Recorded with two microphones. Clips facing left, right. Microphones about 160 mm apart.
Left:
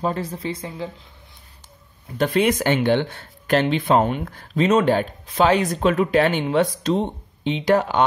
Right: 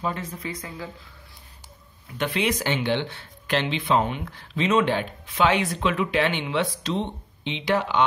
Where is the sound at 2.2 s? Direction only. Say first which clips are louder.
Left 6 dB; 45° left (ahead or behind).